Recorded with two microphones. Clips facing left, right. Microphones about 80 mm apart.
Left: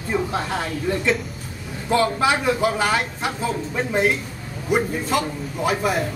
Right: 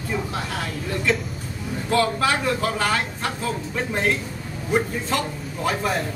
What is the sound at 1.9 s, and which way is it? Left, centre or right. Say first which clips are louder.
A man's voice: left 2 dB; centre.